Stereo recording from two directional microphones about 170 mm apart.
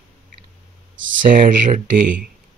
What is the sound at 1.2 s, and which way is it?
Speech, 50° right (ahead or behind).